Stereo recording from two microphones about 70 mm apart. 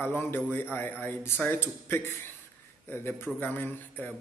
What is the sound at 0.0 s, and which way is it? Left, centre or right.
A man's voice, left.